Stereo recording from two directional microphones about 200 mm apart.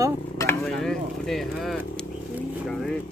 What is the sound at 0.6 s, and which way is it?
Speech, centre (ahead or behind).